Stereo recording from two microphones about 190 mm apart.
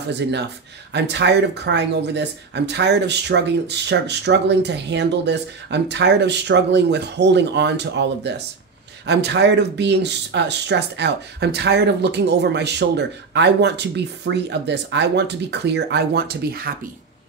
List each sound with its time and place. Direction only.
0.9 s speech: 65° right (ahead or behind)